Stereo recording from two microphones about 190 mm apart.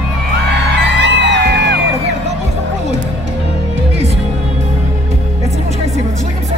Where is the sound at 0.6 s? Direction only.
65° right (ahead or behind).